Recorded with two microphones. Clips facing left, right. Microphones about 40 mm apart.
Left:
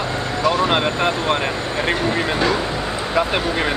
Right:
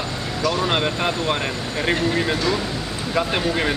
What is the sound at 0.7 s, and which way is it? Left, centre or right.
Speech, centre.